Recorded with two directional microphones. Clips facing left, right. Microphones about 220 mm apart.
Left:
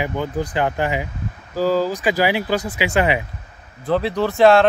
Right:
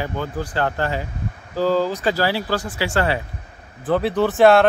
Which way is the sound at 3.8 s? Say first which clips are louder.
Right 1 dB; 5° right (ahead or behind).